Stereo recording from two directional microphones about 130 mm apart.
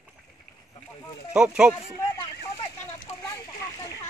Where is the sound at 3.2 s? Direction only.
30° left (ahead or behind).